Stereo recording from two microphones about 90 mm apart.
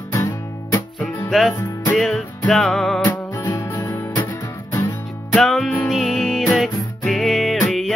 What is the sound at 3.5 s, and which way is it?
Music, 40° left (ahead or behind).